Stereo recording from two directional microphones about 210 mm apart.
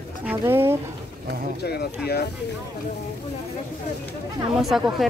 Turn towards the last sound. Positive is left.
turn(degrees=0)  # may be behind; listen again after turning